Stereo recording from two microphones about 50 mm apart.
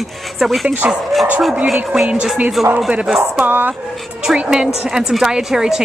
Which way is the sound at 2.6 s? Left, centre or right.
Centre.